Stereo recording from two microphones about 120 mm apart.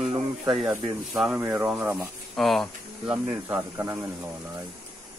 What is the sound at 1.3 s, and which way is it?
Speech, 15° right (ahead or behind).